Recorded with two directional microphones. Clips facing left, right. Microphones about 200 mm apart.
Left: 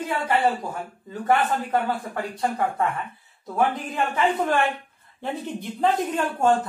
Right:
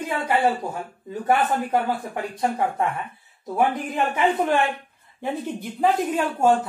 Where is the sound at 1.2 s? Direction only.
15° right (ahead or behind).